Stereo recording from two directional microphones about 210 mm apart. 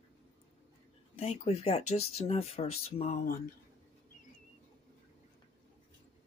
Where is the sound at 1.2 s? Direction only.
30° left (ahead or behind).